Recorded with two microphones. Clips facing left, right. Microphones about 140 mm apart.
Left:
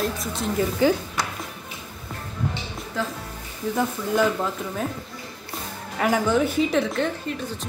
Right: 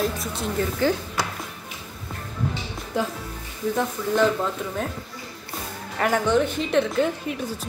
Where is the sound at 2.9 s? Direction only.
20° right (ahead or behind).